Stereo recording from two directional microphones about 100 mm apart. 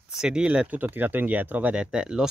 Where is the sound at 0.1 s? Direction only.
5° right (ahead or behind).